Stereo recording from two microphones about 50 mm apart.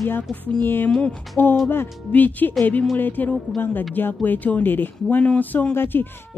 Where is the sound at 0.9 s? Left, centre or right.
Left.